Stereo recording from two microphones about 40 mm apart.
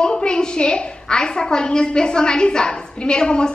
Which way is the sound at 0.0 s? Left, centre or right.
Left.